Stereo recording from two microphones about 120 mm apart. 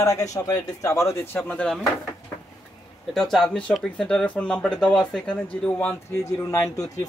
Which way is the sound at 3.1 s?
Centre (ahead or behind).